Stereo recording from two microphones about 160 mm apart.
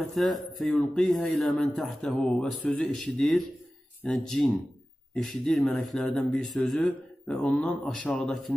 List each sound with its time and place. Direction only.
0.0 s speech: centre (ahead or behind)